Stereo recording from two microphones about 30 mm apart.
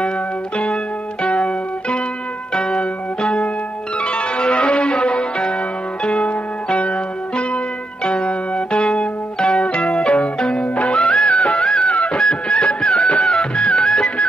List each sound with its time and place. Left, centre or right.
1.2 s music: left
2.5 s music: left
11.2 s music: left
12.1 s music: left